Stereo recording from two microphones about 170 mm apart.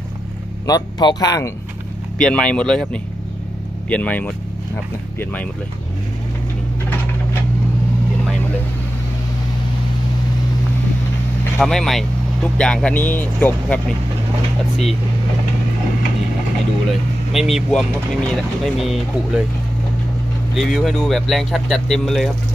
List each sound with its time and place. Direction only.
0.7 s a man's voice: 25° left (ahead or behind)
2.1 s speech: 5° left (ahead or behind)
11.5 s speech: 5° left (ahead or behind)
17.3 s speech: centre (ahead or behind)
20.5 s speech: centre (ahead or behind)